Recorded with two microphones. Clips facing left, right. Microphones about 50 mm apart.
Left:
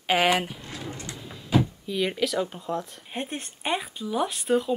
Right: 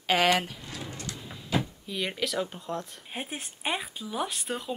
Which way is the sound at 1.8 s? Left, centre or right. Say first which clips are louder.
Left 5 dB; centre.